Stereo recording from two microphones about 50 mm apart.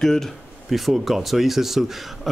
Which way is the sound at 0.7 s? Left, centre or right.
Centre.